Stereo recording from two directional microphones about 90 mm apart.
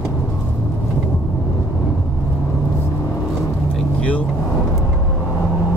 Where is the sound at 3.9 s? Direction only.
15° left (ahead or behind).